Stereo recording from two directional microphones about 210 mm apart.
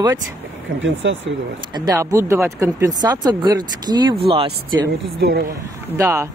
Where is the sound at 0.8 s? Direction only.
65° right (ahead or behind).